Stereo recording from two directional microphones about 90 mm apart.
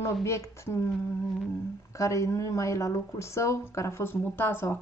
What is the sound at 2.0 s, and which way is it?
A woman's voice, 35° left (ahead or behind).